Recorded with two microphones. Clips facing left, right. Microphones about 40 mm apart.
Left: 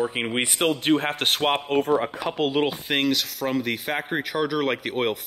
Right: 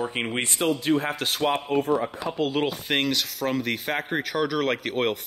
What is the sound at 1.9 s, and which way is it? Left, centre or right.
Speech, left.